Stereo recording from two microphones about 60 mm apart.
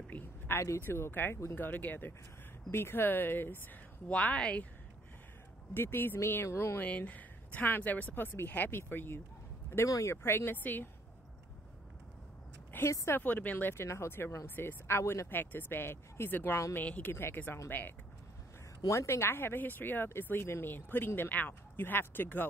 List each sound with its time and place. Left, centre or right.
0.6 s speech: left
1.5 s speech: left
4.1 s speech: left
5.8 s speech: left
6.8 s speech: left
9.8 s speech: left
10.2 s speech: left
12.8 s speech: left
13.2 s speech: left
13.8 s speech: left
16.8 s speech: left
17.1 s speech: left
18.9 s speech: left